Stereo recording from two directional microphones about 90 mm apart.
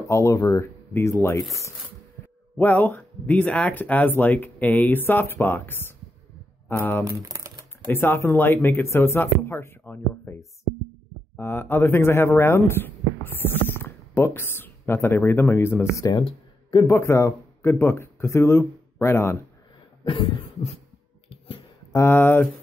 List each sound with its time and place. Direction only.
0.0 s speech: 35° left (ahead or behind)
2.5 s speech: 20° left (ahead or behind)
7.2 s typing: 40° right (ahead or behind)
7.9 s speech: 25° left (ahead or behind)
11.3 s speech: 25° left (ahead or behind)
20.1 s beatboxing: 70° left (ahead or behind)
21.3 s a sound: 80° left
21.9 s speech: 25° left (ahead or behind)